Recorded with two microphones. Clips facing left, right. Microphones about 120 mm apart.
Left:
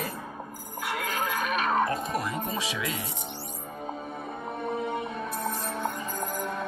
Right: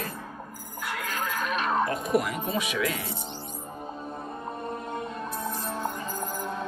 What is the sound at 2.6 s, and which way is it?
Speech, 25° left (ahead or behind).